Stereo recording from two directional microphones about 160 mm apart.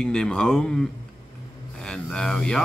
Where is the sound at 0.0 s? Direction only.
5° left (ahead or behind).